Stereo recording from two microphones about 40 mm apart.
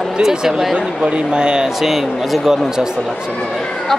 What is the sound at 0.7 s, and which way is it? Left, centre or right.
Speech, right.